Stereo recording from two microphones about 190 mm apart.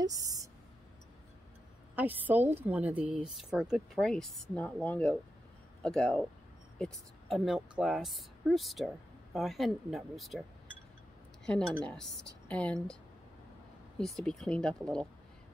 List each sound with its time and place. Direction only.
0.0 s a sound: 20° right (ahead or behind)
2.0 s a woman's voice: 10° right (ahead or behind)
11.4 s speech: 5° left (ahead or behind)
13.9 s speech: 5° left (ahead or behind)